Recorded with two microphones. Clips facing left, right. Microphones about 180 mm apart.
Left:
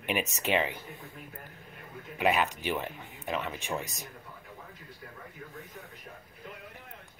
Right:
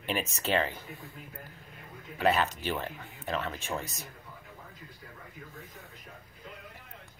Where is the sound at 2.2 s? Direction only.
15° left (ahead or behind).